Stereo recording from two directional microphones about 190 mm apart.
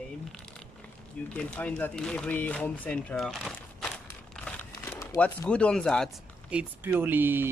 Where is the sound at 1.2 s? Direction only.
5° left (ahead or behind).